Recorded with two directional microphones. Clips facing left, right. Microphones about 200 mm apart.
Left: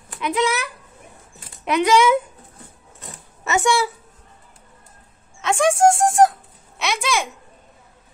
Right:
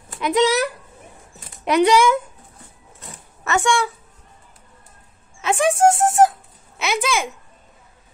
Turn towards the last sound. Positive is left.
turn(degrees=0)  # may be behind; listen again after turning